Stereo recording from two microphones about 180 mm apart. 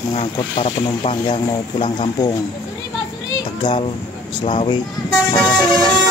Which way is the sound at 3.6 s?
30° left (ahead or behind).